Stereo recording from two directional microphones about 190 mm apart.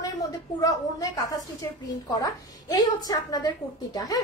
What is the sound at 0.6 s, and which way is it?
Speech, 20° left (ahead or behind).